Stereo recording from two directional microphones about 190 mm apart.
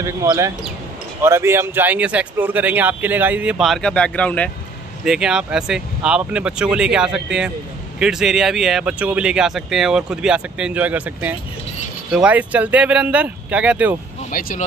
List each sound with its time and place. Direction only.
0.0 s speech: 15° right (ahead or behind)
14.3 s speech: 50° left (ahead or behind)